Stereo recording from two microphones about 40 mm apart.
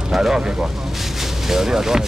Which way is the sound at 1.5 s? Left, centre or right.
Centre.